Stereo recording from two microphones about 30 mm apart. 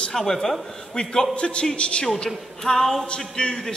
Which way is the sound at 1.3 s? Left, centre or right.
Left.